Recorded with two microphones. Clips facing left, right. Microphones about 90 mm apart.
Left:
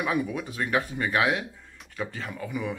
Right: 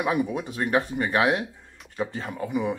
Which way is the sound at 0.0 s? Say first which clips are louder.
Right 3 dB; 30° right (ahead or behind).